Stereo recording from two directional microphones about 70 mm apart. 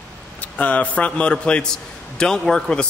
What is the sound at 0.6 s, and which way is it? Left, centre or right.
A man's voice, centre.